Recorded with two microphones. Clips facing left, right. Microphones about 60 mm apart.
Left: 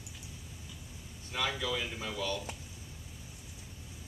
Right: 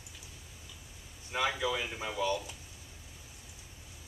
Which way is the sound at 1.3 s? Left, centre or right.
Centre.